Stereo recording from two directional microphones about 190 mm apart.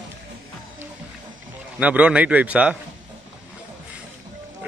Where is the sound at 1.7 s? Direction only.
5° right (ahead or behind).